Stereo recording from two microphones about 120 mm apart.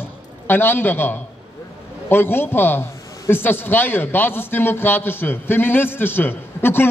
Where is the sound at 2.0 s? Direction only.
20° left (ahead or behind).